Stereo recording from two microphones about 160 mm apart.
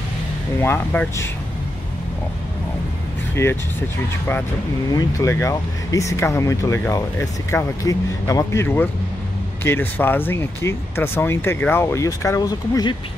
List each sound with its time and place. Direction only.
0.6 s speech: 15° left (ahead or behind)
4.9 s speech: 20° left (ahead or behind)